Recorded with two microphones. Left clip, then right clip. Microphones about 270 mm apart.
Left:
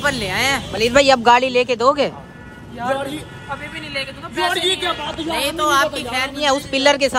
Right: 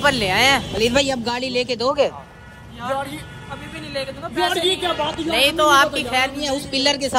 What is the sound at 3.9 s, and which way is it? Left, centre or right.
Speech, centre.